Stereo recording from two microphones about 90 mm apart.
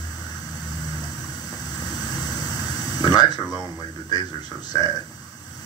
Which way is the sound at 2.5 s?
50° left (ahead or behind).